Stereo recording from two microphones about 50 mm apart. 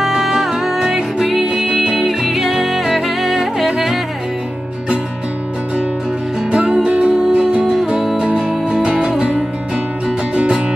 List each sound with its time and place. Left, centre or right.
0.0 s music: centre
6.5 s music: right
7.7 s music: centre